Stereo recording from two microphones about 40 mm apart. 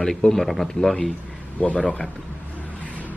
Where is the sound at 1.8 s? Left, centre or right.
Left.